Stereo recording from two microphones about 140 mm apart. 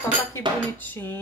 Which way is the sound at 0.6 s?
15° left (ahead or behind).